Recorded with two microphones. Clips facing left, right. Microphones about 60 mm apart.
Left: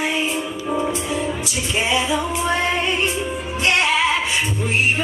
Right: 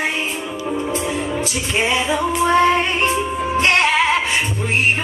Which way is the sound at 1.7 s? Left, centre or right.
Right.